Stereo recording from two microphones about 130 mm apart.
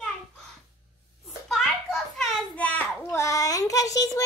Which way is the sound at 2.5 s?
10° left (ahead or behind).